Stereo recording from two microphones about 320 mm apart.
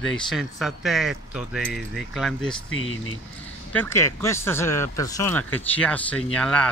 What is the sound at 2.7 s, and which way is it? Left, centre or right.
Speech, left.